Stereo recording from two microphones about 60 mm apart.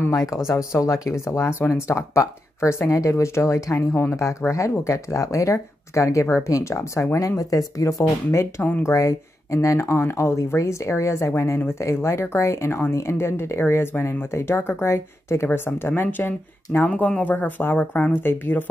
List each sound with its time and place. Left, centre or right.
0.1 s speech: left
2.9 s speech: left
3.9 s speech: left
4.5 s speech: left
7.2 s speech: left
9.8 s speech: left
17.7 s speech: centre
18.1 s speech: left